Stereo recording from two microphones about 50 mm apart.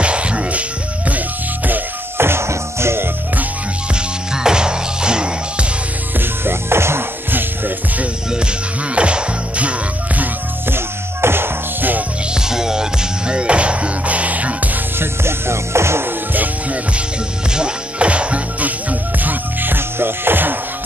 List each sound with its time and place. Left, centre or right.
0.0 s music: right
2.1 s music: right
4.4 s music: centre
6.1 s music: right
7.2 s music: right
8.9 s music: right
10.7 s music: right
12.4 s music: centre; by 14.7 s right
15.0 s music: right
17.6 s music: right